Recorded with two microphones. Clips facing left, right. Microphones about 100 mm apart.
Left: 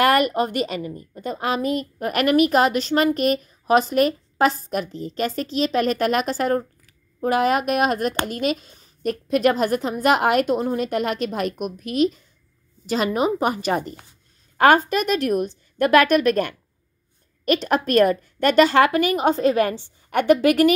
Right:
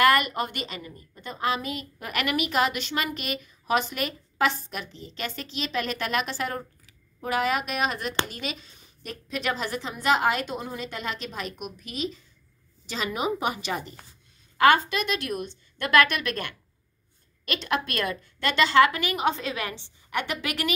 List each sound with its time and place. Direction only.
0.0 s a woman's voice: 40° left (ahead or behind)